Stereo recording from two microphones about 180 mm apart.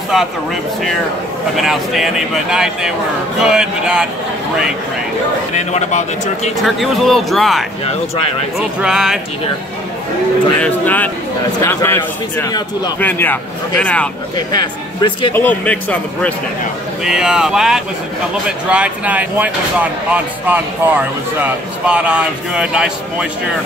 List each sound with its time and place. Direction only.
1.6 s speech: centre (ahead or behind)
5.5 s speech: 40° left (ahead or behind)
6.6 s speech: centre (ahead or behind)
10.6 s a man's voice: 10° left (ahead or behind)
13.0 s a man's voice: 10° left (ahead or behind)
14.3 s a man's voice: 25° left (ahead or behind)
15.3 s a man's voice: 10° left (ahead or behind)
17.0 s speech: 5° right (ahead or behind)